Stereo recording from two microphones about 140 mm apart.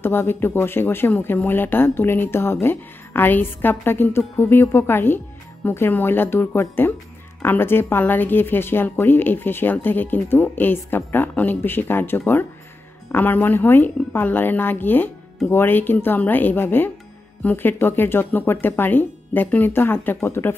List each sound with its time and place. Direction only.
0.0 s a woman's voice: 15° left (ahead or behind)